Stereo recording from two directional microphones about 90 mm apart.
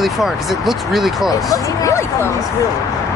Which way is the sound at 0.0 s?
Centre (ahead or behind).